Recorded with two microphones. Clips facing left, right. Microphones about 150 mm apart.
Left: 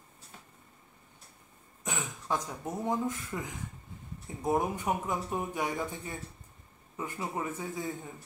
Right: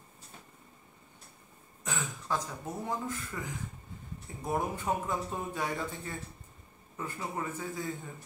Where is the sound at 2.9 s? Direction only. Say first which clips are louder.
Left 6 dB; 20° left (ahead or behind).